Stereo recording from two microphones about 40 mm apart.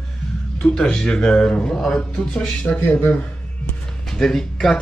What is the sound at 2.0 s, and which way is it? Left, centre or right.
Speech, left.